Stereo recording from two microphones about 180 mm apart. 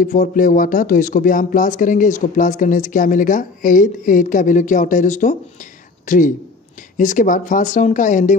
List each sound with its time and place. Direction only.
0.0 s speech: 45° left (ahead or behind)